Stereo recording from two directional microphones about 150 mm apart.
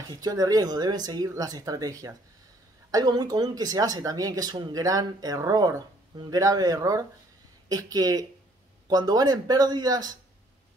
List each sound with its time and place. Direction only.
0.1 s speech: 25° right (ahead or behind)